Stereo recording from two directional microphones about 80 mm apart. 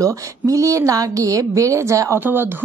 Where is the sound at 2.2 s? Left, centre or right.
Right.